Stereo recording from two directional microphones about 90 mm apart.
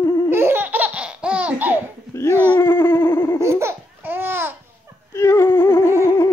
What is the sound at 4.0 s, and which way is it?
Babbling, 25° right (ahead or behind).